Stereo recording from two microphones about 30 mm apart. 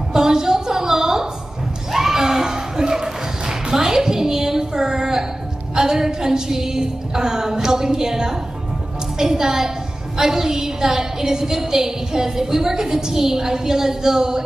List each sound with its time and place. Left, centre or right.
0.1 s a sound: right
9.2 s music: centre
10.1 s a woman's voice: centre